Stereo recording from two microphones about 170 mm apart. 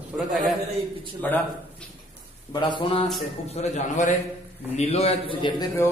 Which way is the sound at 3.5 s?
45° left (ahead or behind).